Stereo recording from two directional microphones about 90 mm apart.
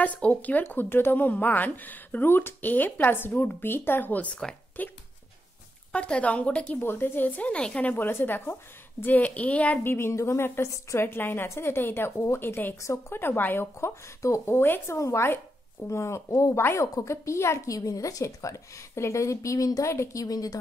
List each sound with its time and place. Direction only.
0.0 s a woman's voice: 15° left (ahead or behind)
9.9 s a woman's voice: 30° left (ahead or behind)